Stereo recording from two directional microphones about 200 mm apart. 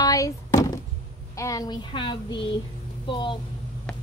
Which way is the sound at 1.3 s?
15° left (ahead or behind).